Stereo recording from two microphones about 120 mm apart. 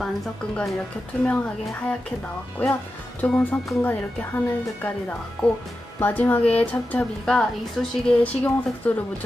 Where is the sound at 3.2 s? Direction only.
10° left (ahead or behind).